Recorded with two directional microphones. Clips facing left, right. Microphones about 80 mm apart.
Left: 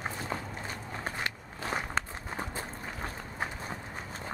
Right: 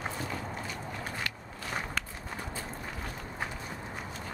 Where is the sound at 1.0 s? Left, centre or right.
Left.